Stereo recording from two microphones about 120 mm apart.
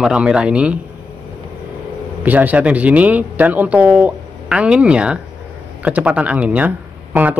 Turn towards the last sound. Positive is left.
turn(degrees=-15)  # may be behind; listen again after turning